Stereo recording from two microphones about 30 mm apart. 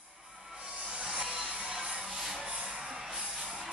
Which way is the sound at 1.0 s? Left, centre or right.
Right.